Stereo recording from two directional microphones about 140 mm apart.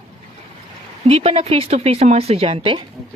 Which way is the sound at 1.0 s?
45° right (ahead or behind).